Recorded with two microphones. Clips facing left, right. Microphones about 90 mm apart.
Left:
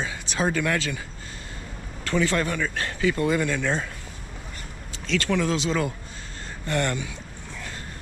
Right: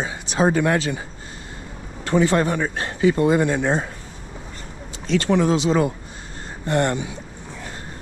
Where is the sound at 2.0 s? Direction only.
25° right (ahead or behind).